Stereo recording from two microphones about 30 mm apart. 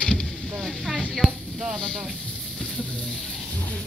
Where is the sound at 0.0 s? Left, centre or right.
Left.